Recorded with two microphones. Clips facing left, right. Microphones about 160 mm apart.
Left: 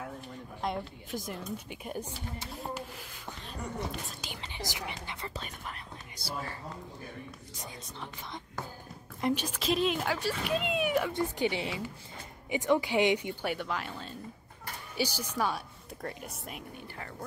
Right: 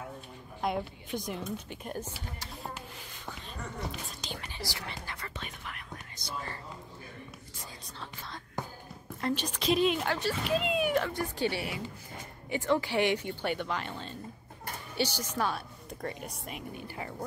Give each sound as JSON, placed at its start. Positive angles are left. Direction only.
{"t": 0.6, "sound": "speech", "side_deg": -5}
{"t": 4.4, "sound": "speech", "side_deg": 20}
{"t": 6.1, "sound": "speech", "side_deg": 5}
{"t": 9.2, "sound": "speech", "side_deg": 10}
{"t": 11.1, "sound": "speech", "side_deg": 15}